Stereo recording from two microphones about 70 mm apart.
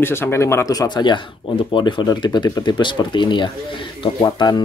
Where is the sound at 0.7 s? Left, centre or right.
Left.